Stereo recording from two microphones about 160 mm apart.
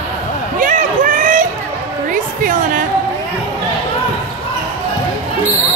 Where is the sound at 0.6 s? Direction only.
55° right (ahead or behind).